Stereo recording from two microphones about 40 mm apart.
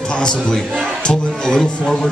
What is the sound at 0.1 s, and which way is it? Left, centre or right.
A man's voice, left.